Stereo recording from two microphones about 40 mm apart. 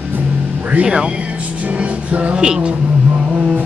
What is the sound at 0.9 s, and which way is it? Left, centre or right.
Music, right.